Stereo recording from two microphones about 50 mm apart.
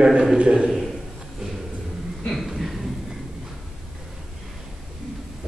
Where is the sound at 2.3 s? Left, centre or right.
Centre.